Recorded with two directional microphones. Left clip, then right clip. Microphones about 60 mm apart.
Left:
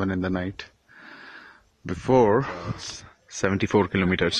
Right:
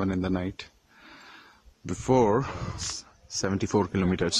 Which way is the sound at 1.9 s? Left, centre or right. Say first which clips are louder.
Left 4 dB; left.